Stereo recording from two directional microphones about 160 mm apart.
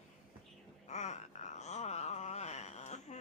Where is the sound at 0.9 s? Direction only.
45° left (ahead or behind).